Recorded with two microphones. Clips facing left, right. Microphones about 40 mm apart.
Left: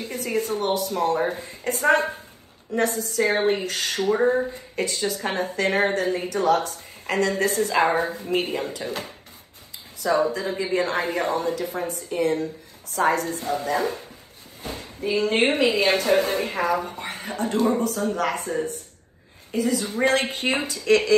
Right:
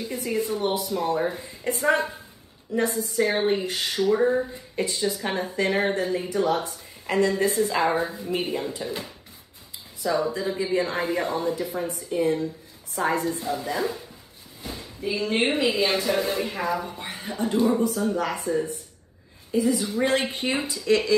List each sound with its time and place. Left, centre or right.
0.0 s a woman's voice: left
2.8 s a woman's voice: left
4.2 s speech: left
4.7 s a woman's voice: left
6.2 s a woman's voice: left
7.8 s a woman's voice: left
8.1 s a woman's voice: left
19.5 s a woman's voice: left